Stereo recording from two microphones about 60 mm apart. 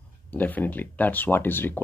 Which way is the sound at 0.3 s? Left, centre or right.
Left.